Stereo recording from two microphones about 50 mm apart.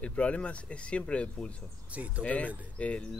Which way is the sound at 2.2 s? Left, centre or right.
Left.